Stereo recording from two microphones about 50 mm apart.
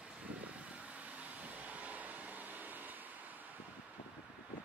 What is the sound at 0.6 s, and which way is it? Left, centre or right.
Vehicle, right.